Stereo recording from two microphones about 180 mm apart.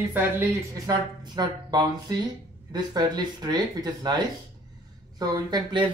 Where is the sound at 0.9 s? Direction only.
25° right (ahead or behind).